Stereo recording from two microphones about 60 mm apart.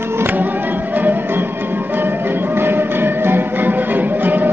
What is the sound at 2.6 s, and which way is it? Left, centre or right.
Music, right.